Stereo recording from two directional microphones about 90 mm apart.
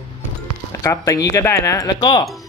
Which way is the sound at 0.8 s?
40° left (ahead or behind).